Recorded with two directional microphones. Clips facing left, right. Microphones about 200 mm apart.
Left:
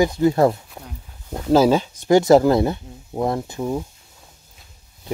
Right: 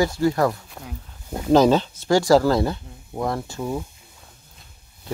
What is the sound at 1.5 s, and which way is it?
Speech, 10° left (ahead or behind).